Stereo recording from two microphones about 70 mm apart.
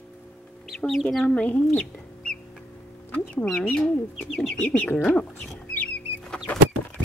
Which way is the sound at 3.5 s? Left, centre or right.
Centre.